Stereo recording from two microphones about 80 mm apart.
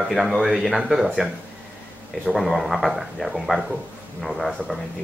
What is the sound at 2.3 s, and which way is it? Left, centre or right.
Speech, centre.